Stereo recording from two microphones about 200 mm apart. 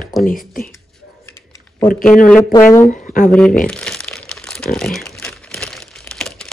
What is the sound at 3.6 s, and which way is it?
Crumpling, 5° left (ahead or behind).